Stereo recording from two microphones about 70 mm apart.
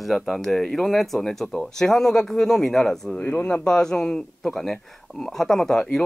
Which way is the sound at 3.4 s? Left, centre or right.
Centre.